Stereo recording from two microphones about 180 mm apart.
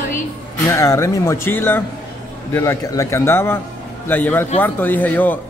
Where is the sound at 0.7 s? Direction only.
15° left (ahead or behind).